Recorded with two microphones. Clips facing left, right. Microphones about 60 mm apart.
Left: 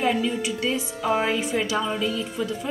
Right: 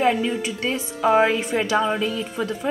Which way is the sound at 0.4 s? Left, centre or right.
Right.